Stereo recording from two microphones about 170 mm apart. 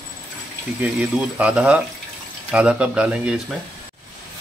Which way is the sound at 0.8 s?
10° right (ahead or behind).